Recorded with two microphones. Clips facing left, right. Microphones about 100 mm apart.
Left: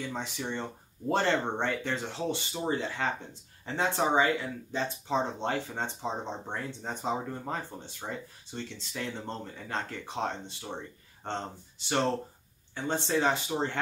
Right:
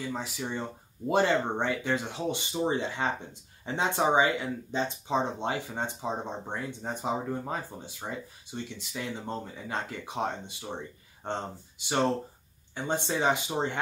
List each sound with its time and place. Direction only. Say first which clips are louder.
0.0 s speech: right 1 dB; 5° right (ahead or behind)